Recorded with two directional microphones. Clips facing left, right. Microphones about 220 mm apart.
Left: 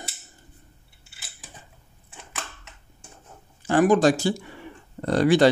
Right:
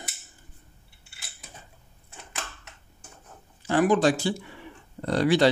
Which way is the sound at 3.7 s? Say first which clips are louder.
Left 3 dB; 45° left (ahead or behind).